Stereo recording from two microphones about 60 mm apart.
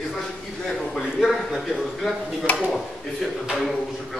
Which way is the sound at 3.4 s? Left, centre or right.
Centre.